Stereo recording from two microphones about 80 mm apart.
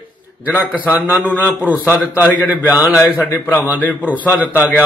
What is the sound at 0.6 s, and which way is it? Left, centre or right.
Speech, centre.